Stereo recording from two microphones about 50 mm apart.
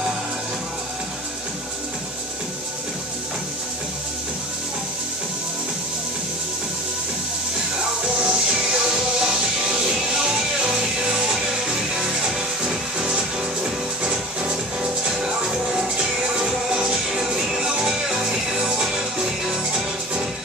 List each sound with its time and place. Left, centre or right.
8.2 s music: centre